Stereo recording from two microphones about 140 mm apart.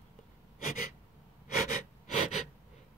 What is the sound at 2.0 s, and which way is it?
Wheeze, 60° left (ahead or behind).